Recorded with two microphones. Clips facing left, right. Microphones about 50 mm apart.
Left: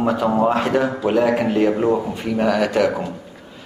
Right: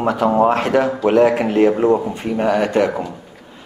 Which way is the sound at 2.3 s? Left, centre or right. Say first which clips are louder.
Right 1 dB; right.